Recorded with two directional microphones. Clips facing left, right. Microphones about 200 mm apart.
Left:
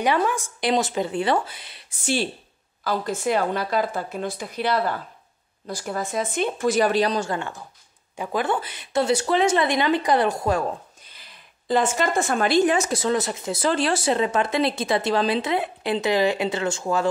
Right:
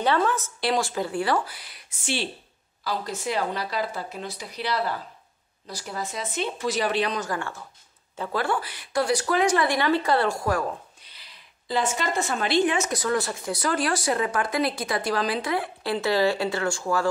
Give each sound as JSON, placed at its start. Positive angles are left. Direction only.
{"t": 0.0, "sound": "speech", "side_deg": 15}
{"t": 2.8, "sound": "a woman's voice", "side_deg": 50}
{"t": 11.1, "sound": "speech", "side_deg": 50}